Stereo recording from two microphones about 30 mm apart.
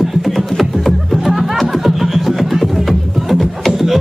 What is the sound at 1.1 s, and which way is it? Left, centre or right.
Music, centre.